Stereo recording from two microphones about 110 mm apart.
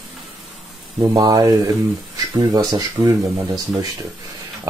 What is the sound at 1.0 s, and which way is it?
Speech, 35° right (ahead or behind).